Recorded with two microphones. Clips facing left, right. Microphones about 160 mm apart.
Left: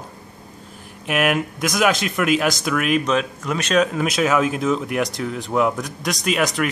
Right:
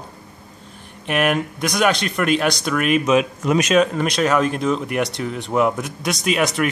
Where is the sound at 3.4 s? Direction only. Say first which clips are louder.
Right 7 dB; 20° right (ahead or behind).